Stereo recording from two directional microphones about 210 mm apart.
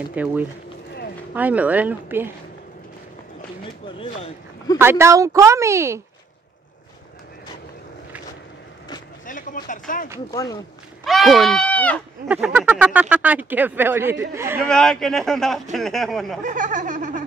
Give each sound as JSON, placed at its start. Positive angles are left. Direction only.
{"t": 0.1, "sound": "speech", "side_deg": -5}
{"t": 4.0, "sound": "speech", "side_deg": 25}
{"t": 4.7, "sound": "speech", "side_deg": -10}
{"t": 9.2, "sound": "speech", "side_deg": 40}
{"t": 10.3, "sound": "speech", "side_deg": 15}
{"t": 11.1, "sound": "speech", "side_deg": 0}
{"t": 12.3, "sound": "speech", "side_deg": -5}
{"t": 14.7, "sound": "speech", "side_deg": 5}
{"t": 16.4, "sound": "speech", "side_deg": -35}